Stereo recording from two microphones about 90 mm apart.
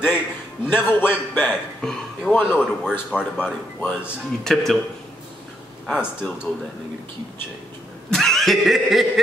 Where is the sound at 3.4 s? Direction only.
15° left (ahead or behind).